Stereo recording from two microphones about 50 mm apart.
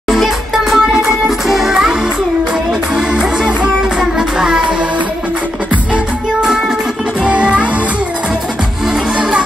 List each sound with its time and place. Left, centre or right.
0.1 s music: centre
3.2 s music: centre
7.2 s music: right